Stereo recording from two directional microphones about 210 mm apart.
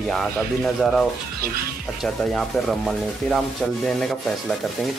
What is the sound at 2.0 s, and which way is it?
Speech, centre (ahead or behind).